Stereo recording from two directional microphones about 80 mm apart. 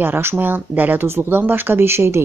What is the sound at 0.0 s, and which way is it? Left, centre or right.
Speech, right.